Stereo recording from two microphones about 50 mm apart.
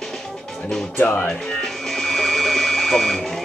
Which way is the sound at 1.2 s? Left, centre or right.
Centre.